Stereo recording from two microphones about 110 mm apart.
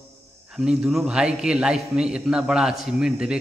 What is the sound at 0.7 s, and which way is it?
A man's voice, 5° right (ahead or behind).